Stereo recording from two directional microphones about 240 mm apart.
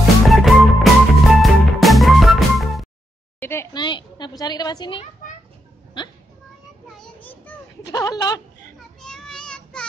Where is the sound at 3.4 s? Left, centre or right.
Centre.